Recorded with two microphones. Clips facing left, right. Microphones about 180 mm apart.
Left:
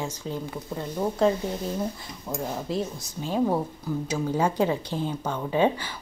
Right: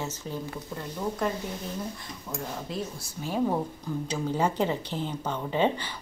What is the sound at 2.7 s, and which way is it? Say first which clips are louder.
Speech: left 5 dB; 20° left (ahead or behind).